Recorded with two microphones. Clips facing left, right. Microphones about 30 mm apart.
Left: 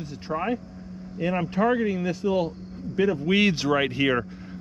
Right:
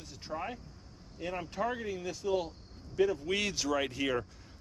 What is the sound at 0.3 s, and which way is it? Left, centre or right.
Speech, left.